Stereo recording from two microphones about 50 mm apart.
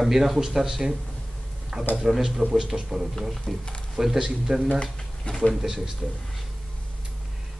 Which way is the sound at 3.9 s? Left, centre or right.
Centre.